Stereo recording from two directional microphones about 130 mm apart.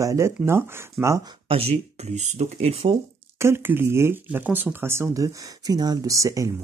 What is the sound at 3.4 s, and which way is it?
Speech, 20° right (ahead or behind).